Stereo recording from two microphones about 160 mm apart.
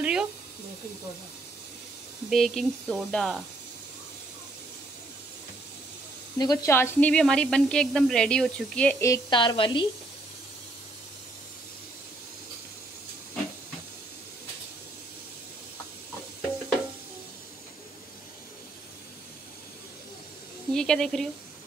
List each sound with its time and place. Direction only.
0.0 s snake: 5° right (ahead or behind)
2.2 s a woman's voice: centre (ahead or behind)
6.3 s a woman's voice: 25° left (ahead or behind); by 8.9 s 5° left (ahead or behind)
9.0 s a woman's voice: 20° left (ahead or behind)
20.7 s speech: 5° left (ahead or behind)